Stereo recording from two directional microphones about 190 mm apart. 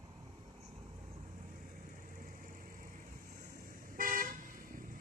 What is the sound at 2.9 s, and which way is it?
Vehicle, 50° right (ahead or behind).